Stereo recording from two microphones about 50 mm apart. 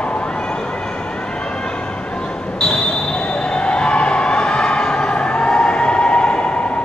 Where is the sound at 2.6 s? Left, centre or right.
Centre.